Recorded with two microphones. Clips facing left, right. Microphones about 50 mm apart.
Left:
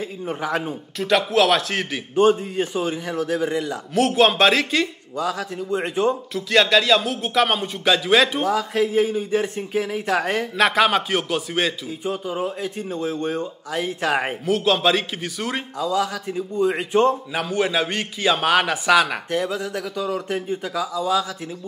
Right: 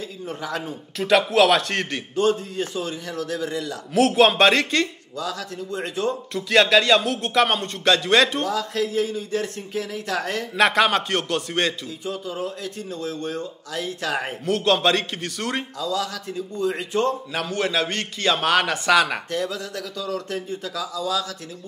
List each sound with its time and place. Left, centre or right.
0.3 s speech: left
0.9 s speech: centre
2.1 s speech: left
3.9 s speech: centre
5.1 s speech: left
6.3 s speech: centre
8.5 s speech: left
10.6 s speech: centre
12.0 s speech: left
14.4 s speech: centre
15.8 s speech: left
17.3 s a man's voice: centre
19.3 s speech: centre